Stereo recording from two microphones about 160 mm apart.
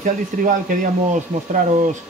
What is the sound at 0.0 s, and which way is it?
Speech, 55° right (ahead or behind).